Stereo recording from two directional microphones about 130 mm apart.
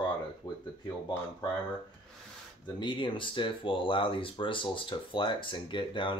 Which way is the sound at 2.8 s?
40° left (ahead or behind).